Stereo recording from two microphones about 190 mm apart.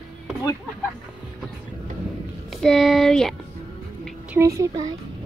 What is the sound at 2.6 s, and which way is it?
Speech, centre (ahead or behind).